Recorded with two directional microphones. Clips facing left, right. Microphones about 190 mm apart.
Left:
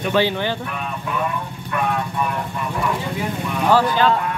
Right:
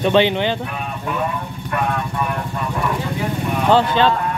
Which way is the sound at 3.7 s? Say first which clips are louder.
Right 1 dB; 25° right (ahead or behind).